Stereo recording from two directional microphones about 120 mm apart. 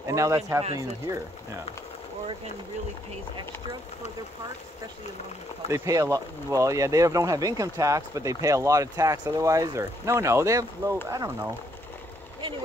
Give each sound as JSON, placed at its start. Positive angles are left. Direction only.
{"t": 0.0, "sound": "a sound", "side_deg": -25}
{"t": 0.7, "sound": "speech", "side_deg": -25}
{"t": 5.7, "sound": "speech", "side_deg": -25}